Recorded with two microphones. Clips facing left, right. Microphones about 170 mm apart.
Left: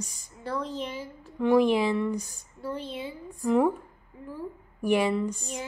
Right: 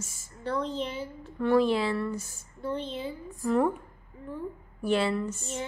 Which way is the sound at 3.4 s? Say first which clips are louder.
Left 2 dB; 15° left (ahead or behind).